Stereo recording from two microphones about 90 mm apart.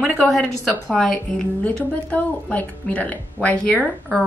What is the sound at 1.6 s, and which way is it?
A woman's voice, 15° left (ahead or behind).